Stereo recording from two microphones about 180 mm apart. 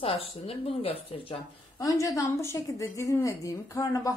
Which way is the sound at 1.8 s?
20° left (ahead or behind).